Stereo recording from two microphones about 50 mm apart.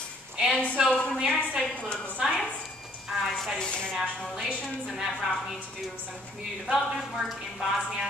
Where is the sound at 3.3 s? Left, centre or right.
Centre.